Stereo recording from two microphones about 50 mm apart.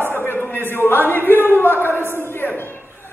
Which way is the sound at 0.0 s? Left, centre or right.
Left.